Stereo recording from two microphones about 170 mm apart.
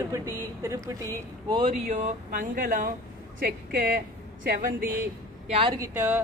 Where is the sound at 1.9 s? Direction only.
50° right (ahead or behind).